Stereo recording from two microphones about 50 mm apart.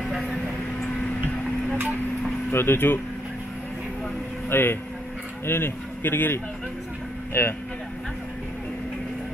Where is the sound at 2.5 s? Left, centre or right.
Left.